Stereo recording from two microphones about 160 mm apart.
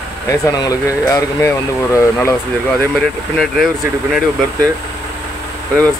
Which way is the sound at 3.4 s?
Centre (ahead or behind).